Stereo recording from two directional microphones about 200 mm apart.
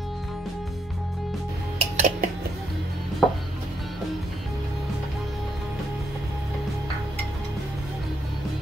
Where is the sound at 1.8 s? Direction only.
35° right (ahead or behind).